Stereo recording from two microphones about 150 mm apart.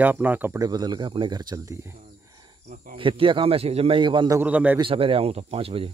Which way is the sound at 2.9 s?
35° right (ahead or behind).